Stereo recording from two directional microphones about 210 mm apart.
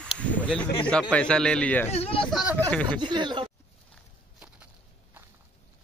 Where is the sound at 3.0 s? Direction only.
20° right (ahead or behind).